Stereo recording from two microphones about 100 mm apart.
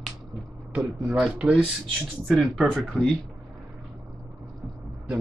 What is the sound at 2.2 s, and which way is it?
Speech, 5° left (ahead or behind).